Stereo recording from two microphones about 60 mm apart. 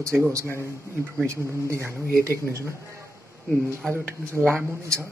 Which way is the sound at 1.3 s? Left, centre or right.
Right.